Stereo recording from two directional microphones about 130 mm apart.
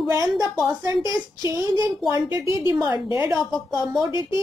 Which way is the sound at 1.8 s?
35° left (ahead or behind).